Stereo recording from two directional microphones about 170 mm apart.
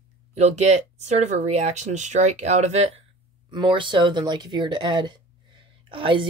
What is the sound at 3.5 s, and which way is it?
Speech, 30° right (ahead or behind).